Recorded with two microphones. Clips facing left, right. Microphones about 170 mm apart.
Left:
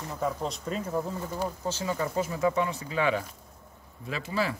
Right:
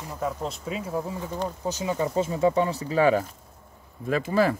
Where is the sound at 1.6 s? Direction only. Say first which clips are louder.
Right 6 dB; 15° right (ahead or behind); by 4.6 s 50° right (ahead or behind).